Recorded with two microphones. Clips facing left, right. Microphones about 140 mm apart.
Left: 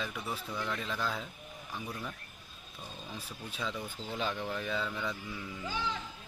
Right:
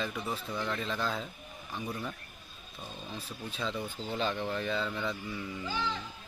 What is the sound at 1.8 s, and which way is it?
Speech, 10° right (ahead or behind).